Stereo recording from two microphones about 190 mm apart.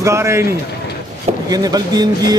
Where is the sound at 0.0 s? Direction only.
15° right (ahead or behind).